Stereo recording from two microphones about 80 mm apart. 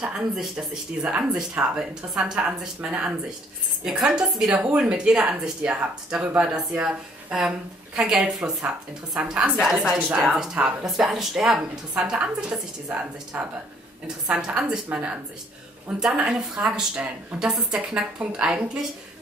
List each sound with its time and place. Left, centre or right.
0.0 s speech: centre
1.1 s speech: centre
9.9 s speech: centre
16.0 s speech: centre